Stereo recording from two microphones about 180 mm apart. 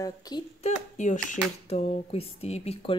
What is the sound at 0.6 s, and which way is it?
A woman's voice, 45° left (ahead or behind).